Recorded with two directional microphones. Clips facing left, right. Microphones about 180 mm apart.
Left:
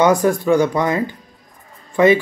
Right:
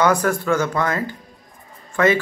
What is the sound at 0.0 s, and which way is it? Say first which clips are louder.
A man's voice: left 4 dB; 20° left (ahead or behind).